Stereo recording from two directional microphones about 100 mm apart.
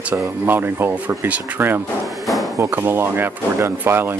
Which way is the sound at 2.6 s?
25° right (ahead or behind).